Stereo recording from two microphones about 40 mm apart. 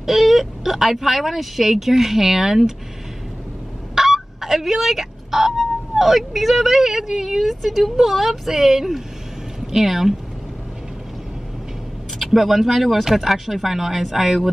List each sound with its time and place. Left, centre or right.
0.0 s speech: centre
3.9 s speech: centre
12.2 s speech: centre